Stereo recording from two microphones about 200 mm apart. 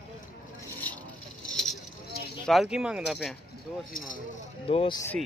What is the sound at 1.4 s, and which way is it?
Vehicle, 5° left (ahead or behind).